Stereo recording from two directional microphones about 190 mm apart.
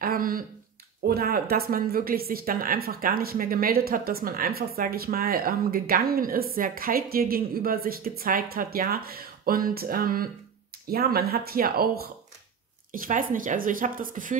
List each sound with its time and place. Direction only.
0.0 s speech: 50° right (ahead or behind)